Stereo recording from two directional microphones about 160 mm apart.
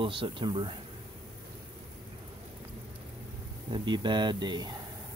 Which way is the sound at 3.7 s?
30° right (ahead or behind).